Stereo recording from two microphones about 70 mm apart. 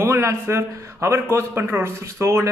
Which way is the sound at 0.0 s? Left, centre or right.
Right.